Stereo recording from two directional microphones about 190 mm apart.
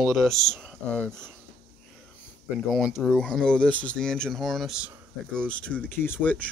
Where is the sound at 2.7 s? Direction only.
Centre (ahead or behind).